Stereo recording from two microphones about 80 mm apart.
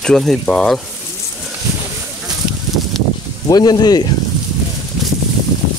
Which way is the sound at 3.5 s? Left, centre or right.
Left.